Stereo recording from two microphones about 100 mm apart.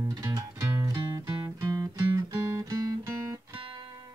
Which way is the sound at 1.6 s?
40° right (ahead or behind).